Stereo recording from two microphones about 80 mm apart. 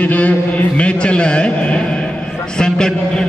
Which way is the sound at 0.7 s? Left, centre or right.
Centre.